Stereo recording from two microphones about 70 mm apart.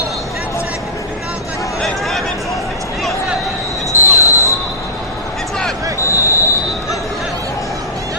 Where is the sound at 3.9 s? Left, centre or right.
Left.